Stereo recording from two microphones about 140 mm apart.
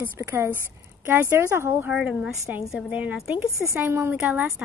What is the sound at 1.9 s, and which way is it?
Speech, 5° right (ahead or behind).